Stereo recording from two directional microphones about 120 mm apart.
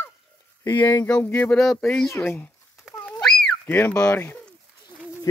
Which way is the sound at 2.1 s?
20° left (ahead or behind).